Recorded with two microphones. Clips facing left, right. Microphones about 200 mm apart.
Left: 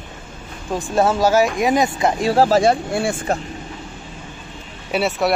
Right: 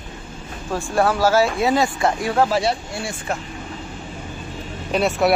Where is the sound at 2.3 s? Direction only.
35° left (ahead or behind).